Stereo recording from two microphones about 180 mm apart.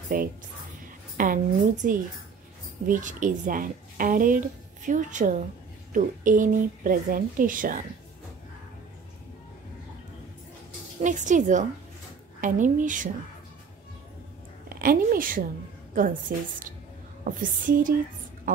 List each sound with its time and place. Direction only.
0.1 s speech: 50° right (ahead or behind)
11.0 s speech: 45° right (ahead or behind)
14.7 s a woman's voice: 50° right (ahead or behind)